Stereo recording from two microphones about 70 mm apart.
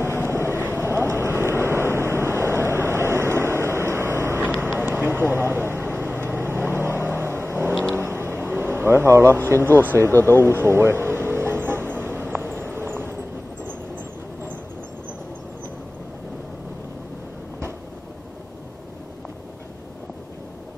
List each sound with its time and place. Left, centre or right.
0.2 s vehicle: right
4.7 s vehicle: right
9.8 s speech: right
10.3 s vehicle: right
12.4 s a sound: right